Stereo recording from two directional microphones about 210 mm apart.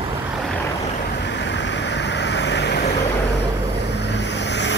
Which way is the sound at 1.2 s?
55° left (ahead or behind).